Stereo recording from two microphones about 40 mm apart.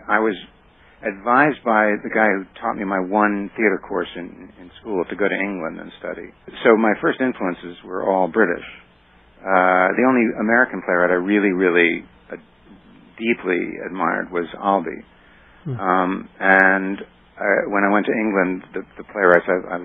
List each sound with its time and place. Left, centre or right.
0.1 s speech: centre
3.6 s speech: right
3.9 s speech: centre
13.7 s speech: right
13.9 s speech: centre